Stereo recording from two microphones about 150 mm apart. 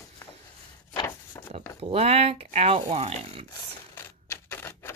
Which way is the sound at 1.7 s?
45° right (ahead or behind).